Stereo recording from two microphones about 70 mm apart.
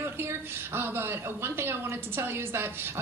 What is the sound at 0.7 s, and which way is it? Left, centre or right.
Speech, right.